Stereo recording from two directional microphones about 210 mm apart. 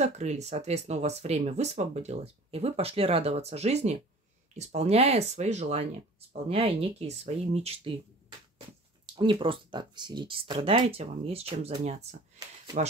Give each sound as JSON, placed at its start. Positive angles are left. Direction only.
{"t": 0.0, "sound": "speech", "side_deg": -35}
{"t": 9.0, "sound": "speech", "side_deg": -20}